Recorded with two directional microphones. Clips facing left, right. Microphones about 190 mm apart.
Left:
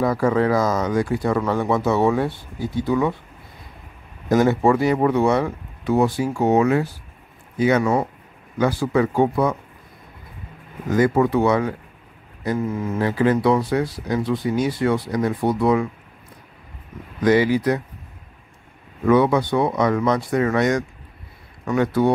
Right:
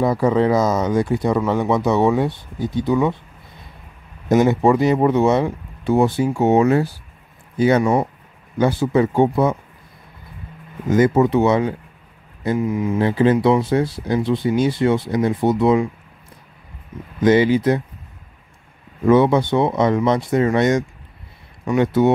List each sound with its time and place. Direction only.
0.0 s speech: 20° right (ahead or behind)
4.3 s speech: 20° right (ahead or behind)
7.8 s speech: 20° right (ahead or behind)
10.9 s speech: 20° right (ahead or behind)
13.0 s speech: 25° right (ahead or behind)
17.2 s speech: 25° right (ahead or behind)
19.0 s speech: 25° right (ahead or behind)